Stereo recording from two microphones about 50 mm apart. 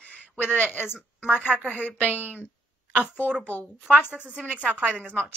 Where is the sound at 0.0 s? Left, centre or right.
Left.